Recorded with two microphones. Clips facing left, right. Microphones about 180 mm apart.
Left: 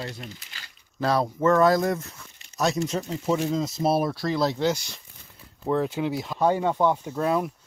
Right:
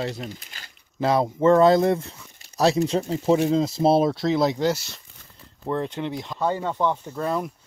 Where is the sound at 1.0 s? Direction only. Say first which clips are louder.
Right 3 dB; 20° right (ahead or behind).